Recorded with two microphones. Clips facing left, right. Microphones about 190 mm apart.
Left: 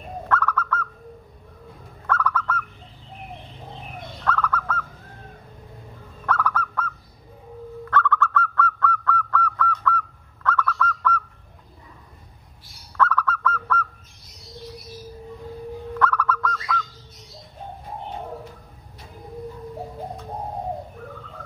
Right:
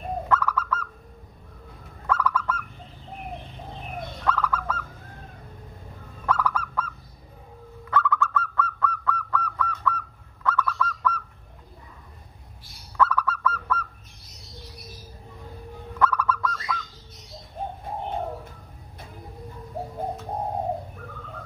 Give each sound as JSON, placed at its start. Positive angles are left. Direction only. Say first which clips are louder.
{"t": 0.3, "sound": "bird", "louder": "left 2 dB", "side_deg": -10}
{"t": 2.0, "sound": "fowl", "louder": "even", "side_deg": -10}
{"t": 4.2, "sound": "bird", "louder": "left 1 dB", "side_deg": -10}
{"t": 6.2, "sound": "honk", "louder": "left 1 dB", "side_deg": -10}
{"t": 7.9, "sound": "honk", "louder": "left 2 dB", "side_deg": -10}
{"t": 12.9, "sound": "honk", "louder": "left 1 dB", "side_deg": -10}
{"t": 16.0, "sound": "bird", "louder": "even", "side_deg": -10}